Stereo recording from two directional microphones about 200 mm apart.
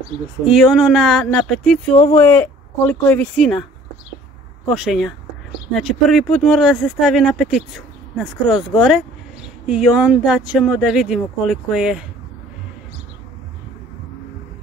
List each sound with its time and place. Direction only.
0.5 s speech: centre (ahead or behind)
1.9 s speech: 30° left (ahead or behind)
2.1 s a woman's voice: 10° left (ahead or behind)
4.6 s speech: centre (ahead or behind)